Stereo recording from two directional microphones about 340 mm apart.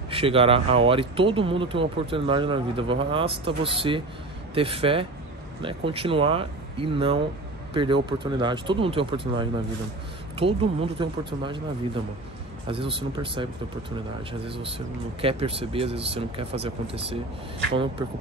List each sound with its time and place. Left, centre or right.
0.1 s speech: centre